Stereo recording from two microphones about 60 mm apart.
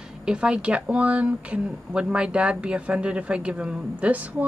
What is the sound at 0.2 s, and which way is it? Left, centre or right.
Speech, centre.